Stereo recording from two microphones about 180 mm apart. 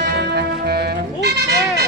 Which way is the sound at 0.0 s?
65° right (ahead or behind).